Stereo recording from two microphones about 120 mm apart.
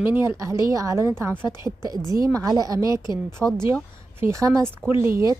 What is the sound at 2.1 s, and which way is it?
Speech, 30° right (ahead or behind).